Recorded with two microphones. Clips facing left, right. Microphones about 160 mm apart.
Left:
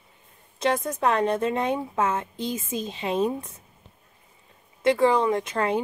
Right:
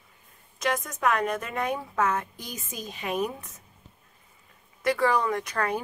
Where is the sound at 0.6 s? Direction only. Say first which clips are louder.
Left 3 dB; 30° left (ahead or behind).